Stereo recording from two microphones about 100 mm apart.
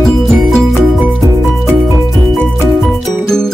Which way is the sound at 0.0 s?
Centre (ahead or behind).